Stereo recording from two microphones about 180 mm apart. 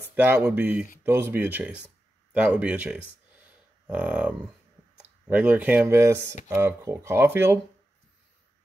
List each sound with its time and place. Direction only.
0.1 s speech: 10° right (ahead or behind)